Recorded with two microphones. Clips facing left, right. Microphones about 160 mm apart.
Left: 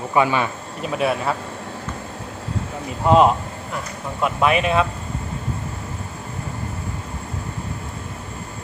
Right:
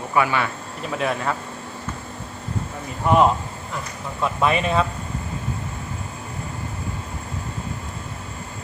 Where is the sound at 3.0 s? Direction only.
20° left (ahead or behind).